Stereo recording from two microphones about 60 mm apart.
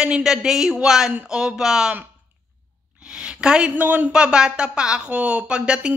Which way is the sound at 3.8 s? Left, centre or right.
Right.